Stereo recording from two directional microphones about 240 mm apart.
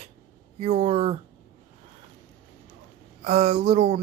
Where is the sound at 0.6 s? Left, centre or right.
Right.